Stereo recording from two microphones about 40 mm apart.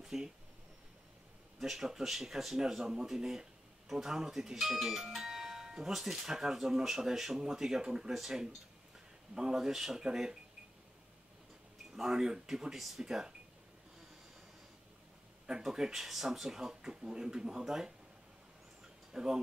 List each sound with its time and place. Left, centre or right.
0.1 s speech: centre
1.6 s speech: centre
11.9 s speech: centre
12.7 s speech: centre
15.4 s speech: centre
19.1 s speech: centre